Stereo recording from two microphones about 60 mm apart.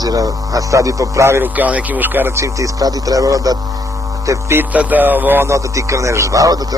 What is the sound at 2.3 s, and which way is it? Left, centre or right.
Speech, right.